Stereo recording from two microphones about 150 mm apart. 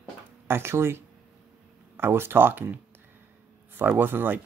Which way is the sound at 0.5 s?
15° right (ahead or behind).